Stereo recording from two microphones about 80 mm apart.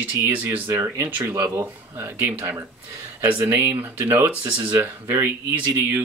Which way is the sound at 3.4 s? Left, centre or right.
Right.